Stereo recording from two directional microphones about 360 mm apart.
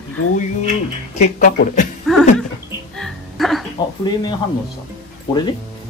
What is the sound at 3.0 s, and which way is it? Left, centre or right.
Music, centre.